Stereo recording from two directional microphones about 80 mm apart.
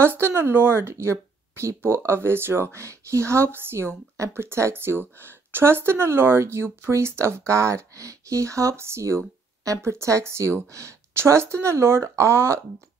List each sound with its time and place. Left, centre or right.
0.0 s speech: right